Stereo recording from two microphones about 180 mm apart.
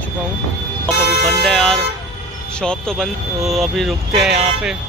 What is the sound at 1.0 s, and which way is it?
Music, 65° left (ahead or behind).